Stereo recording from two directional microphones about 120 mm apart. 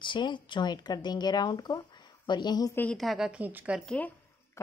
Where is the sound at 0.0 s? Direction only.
40° left (ahead or behind).